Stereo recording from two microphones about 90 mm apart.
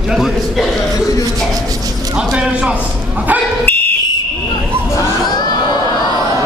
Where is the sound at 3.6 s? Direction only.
20° left (ahead or behind).